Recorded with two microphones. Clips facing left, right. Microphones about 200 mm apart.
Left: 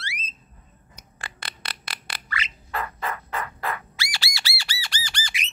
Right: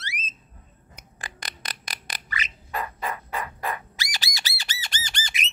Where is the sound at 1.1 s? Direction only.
15° right (ahead or behind).